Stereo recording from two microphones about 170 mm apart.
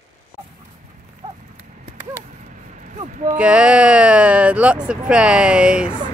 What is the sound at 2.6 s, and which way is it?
Vehicle, 45° right (ahead or behind).